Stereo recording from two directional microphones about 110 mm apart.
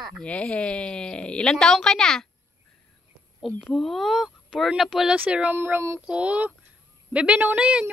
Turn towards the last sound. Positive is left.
turn(degrees=-10)  # may be behind; listen again after turning